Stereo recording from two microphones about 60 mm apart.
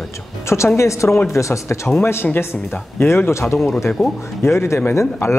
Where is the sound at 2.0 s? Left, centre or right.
Left.